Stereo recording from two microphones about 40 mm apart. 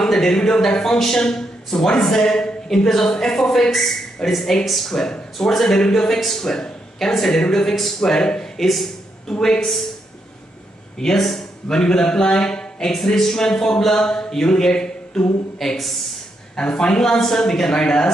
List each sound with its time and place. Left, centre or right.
0.1 s a man's voice: centre
6.4 s a man's voice: centre
8.5 s speech: centre
9.4 s speech: centre
11.0 s a man's voice: centre
15.6 s a man's voice: centre
16.5 s a man's voice: left